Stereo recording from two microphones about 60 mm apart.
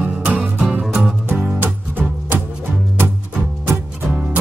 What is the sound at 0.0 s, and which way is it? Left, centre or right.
Music, right.